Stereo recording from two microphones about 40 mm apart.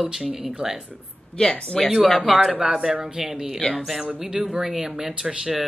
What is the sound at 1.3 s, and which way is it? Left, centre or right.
Speech, left.